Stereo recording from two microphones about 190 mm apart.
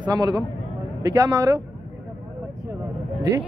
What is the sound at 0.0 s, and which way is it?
A man's voice, 20° right (ahead or behind).